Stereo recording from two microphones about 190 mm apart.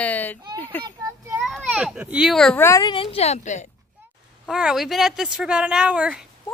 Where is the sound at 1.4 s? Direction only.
Centre (ahead or behind).